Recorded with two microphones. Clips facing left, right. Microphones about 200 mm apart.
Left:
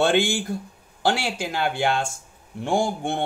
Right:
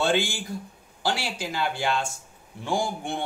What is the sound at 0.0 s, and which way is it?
Speech, 55° left (ahead or behind).